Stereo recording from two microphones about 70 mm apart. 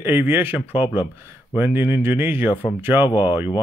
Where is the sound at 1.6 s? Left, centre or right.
Right.